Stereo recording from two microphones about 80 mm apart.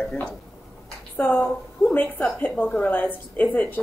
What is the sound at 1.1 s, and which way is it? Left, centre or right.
A woman's voice, left.